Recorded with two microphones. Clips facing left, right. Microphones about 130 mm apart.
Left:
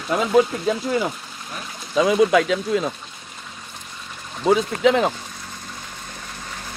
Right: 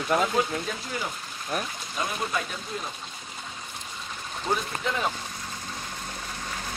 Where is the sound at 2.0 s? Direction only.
90° left.